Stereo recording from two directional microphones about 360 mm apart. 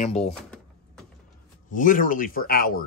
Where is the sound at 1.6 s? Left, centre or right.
Left.